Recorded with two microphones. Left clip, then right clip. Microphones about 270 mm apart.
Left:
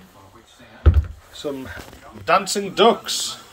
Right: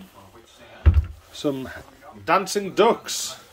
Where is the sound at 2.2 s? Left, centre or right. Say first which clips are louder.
Left 2 dB; centre.